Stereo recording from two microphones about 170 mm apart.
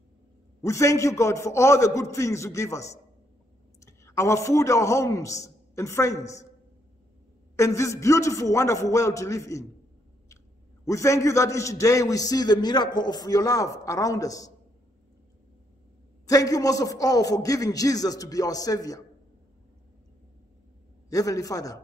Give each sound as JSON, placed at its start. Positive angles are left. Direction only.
{"t": 0.6, "sound": "a man's voice", "side_deg": 15}
{"t": 7.5, "sound": "a man's voice", "side_deg": 20}
{"t": 10.9, "sound": "a man's voice", "side_deg": 20}
{"t": 16.3, "sound": "a man's voice", "side_deg": 20}
{"t": 21.1, "sound": "a man's voice", "side_deg": 20}